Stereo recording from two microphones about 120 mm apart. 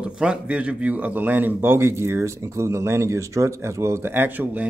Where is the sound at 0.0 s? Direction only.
5° right (ahead or behind).